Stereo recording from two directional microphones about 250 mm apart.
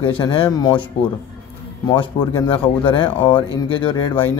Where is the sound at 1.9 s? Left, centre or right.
Centre.